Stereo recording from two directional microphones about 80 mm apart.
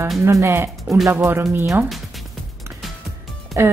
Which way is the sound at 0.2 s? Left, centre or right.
Right.